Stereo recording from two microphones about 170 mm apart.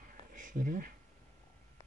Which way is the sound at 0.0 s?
50° right (ahead or behind).